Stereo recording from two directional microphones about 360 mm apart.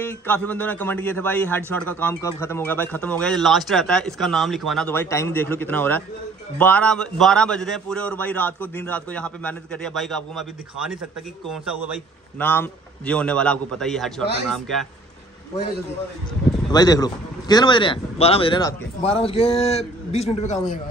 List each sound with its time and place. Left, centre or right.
0.0 s speech: centre
16.7 s speech: centre